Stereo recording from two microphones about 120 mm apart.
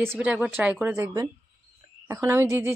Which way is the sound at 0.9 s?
30° right (ahead or behind).